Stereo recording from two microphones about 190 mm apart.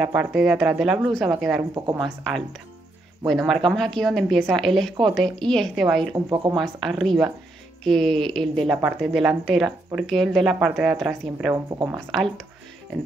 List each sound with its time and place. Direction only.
0.0 s speech: 5° right (ahead or behind)
6.1 s speech: 20° right (ahead or behind)
6.5 s speech: centre (ahead or behind)